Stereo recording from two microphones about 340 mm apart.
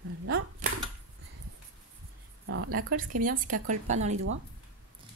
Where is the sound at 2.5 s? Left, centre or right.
Right.